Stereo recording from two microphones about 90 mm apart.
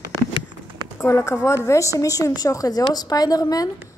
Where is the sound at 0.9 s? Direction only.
30° left (ahead or behind).